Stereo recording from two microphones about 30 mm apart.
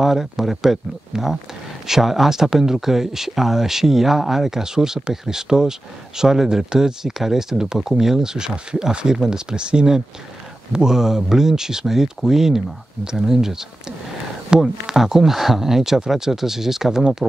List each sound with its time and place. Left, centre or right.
0.0 s speech: centre
9.6 s speech: right
10.7 s speech: right
14.5 s speech: right
15.0 s speech: centre
17.2 s speech: centre